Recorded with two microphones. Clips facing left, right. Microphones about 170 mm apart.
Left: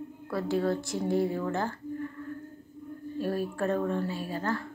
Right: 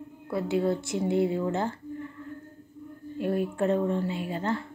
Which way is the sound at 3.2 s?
20° right (ahead or behind).